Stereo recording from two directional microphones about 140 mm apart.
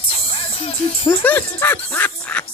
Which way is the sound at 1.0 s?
10° left (ahead or behind).